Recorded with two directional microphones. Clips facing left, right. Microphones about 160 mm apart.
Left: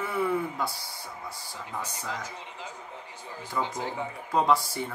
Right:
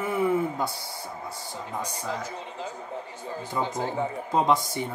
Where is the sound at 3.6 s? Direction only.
20° right (ahead or behind).